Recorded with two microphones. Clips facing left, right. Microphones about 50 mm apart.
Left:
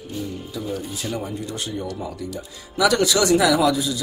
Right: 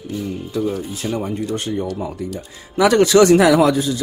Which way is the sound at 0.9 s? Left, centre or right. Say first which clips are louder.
Right 5 dB; right.